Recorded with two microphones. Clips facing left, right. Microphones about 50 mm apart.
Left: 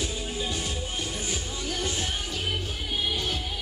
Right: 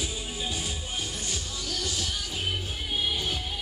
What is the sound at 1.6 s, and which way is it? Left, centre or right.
Music, left.